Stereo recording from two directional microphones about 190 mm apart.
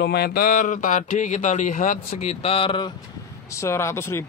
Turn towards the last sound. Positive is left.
turn(degrees=15)  # may be behind; listen again after turning